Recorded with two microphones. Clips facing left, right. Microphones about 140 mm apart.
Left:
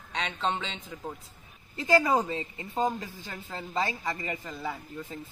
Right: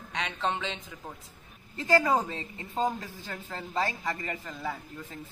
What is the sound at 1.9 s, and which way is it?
A woman's voice, 10° left (ahead or behind).